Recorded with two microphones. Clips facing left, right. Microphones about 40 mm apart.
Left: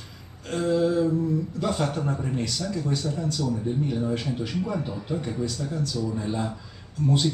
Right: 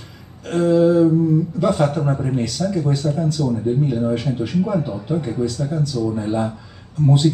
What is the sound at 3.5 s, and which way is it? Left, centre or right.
Speech, right.